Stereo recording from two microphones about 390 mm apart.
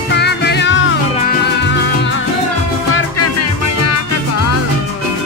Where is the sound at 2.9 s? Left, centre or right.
Left.